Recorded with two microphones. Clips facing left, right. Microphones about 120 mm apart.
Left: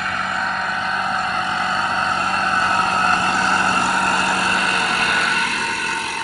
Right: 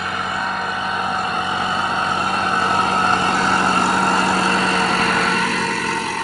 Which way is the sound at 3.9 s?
30° right (ahead or behind).